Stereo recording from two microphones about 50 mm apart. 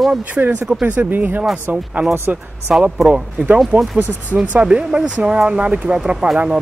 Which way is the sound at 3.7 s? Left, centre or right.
Right.